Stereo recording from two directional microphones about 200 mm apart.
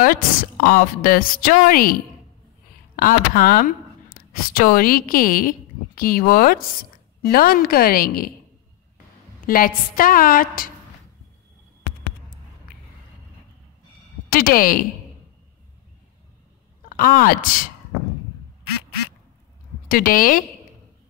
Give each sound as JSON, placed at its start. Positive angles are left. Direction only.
{"t": 0.0, "sound": "a woman's voice", "side_deg": 45}
{"t": 3.0, "sound": "a woman's voice", "side_deg": 45}
{"t": 9.5, "sound": "a woman's voice", "side_deg": 45}
{"t": 14.3, "sound": "a woman's voice", "side_deg": 45}
{"t": 16.9, "sound": "a woman's voice", "side_deg": 45}
{"t": 19.9, "sound": "a woman's voice", "side_deg": 45}